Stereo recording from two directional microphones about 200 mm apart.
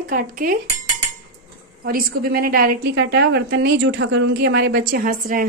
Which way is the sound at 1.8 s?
50° right (ahead or behind).